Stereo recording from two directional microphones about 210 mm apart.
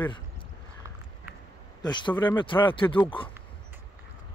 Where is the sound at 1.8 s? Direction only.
20° left (ahead or behind).